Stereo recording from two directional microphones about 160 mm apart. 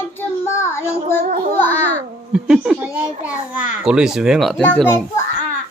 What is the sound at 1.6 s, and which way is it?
Babbling, 10° left (ahead or behind).